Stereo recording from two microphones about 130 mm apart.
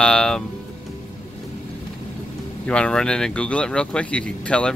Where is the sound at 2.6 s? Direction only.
5° left (ahead or behind).